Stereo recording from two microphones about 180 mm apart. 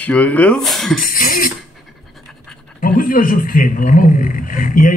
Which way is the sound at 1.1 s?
50° left (ahead or behind).